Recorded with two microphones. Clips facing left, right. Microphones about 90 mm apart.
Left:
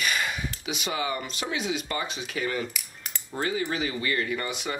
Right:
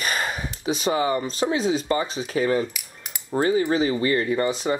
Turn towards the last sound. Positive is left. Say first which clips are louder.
# right 8 dB
turn(degrees=-30)  # may be behind; listen again after turning